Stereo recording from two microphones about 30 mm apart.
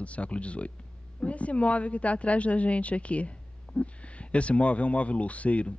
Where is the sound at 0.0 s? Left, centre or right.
Left.